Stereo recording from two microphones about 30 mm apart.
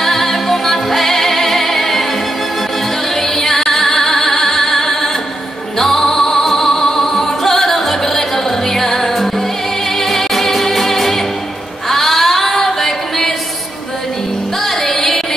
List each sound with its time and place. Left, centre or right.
0.0 s music: centre
3.2 s music: centre
11.9 s singing: centre
14.6 s music: centre